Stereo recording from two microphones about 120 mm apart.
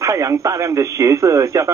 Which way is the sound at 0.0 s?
25° right (ahead or behind).